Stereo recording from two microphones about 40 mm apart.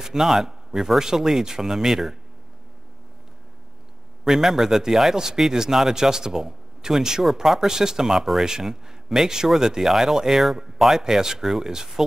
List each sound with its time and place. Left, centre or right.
0.0 s speech: centre
4.2 s speech: centre